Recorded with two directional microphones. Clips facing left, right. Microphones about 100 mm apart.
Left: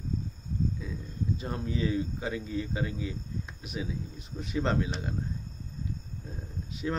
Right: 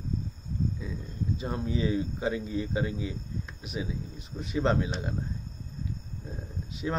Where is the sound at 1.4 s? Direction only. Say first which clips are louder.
Right 3 dB; 15° right (ahead or behind).